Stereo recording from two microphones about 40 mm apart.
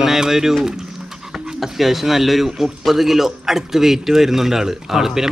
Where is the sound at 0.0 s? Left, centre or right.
Centre.